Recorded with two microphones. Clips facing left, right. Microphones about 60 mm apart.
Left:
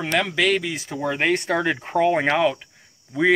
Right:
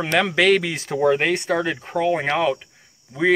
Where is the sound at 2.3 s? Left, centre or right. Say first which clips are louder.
Even; centre.